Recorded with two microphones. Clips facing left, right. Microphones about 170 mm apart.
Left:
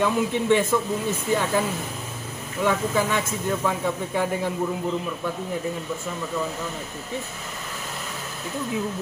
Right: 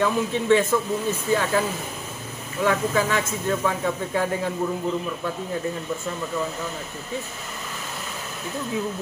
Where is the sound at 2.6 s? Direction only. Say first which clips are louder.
Right 1 dB; 10° left (ahead or behind).